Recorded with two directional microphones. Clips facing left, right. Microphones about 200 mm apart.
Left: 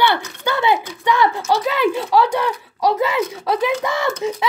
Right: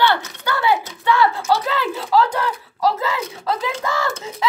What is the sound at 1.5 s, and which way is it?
Speech, 15° left (ahead or behind).